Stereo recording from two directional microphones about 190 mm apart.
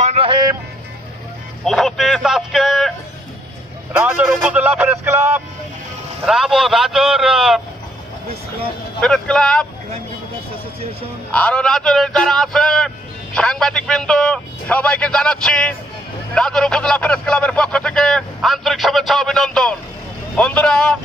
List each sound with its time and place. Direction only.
0.0 s vehicle: 30° right (ahead or behind)
1.6 s a sound: centre (ahead or behind)
3.9 s speech: 10° right (ahead or behind)
6.2 s a man's voice: centre (ahead or behind)
9.0 s a man's voice: 5° left (ahead or behind)
11.3 s a man's voice: 5° left (ahead or behind)